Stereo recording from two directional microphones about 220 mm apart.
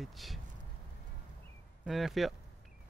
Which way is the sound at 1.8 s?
Centre (ahead or behind).